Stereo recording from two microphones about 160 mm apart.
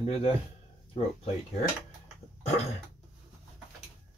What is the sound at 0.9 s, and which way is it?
Speech, 40° left (ahead or behind).